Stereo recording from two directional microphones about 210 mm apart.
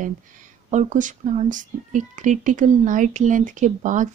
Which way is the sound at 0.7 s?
35° right (ahead or behind).